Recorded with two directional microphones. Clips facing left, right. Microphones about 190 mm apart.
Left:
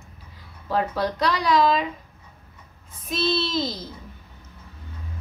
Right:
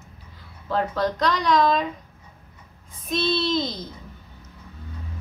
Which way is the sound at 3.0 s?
5° left (ahead or behind).